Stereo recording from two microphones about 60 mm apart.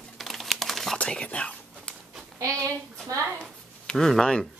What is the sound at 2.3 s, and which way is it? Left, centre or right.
Speech, right.